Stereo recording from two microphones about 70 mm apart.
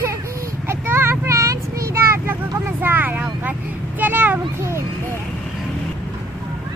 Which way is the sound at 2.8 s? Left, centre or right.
Right.